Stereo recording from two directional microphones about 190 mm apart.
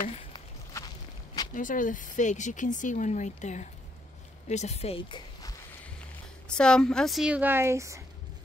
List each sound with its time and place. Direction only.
0.3 s walk: 20° left (ahead or behind)
1.5 s speech: 45° left (ahead or behind); by 5.5 s 25° left (ahead or behind)
6.5 s a woman's voice: 5° left (ahead or behind); by 8.0 s 15° right (ahead or behind)